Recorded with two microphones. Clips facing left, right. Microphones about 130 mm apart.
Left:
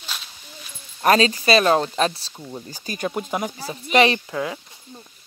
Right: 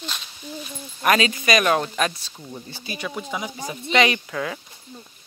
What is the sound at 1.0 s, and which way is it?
Speech, 35° left (ahead or behind).